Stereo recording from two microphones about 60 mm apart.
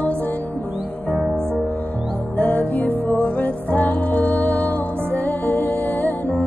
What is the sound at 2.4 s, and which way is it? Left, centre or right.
Music, left.